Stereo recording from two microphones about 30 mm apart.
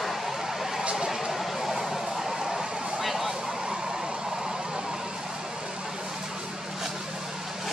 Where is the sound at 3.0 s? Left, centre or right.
Centre.